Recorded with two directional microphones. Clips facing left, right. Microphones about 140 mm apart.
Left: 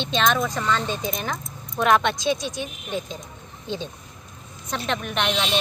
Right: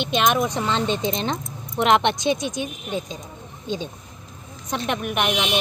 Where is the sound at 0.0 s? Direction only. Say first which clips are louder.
Right 2 dB; 15° right (ahead or behind).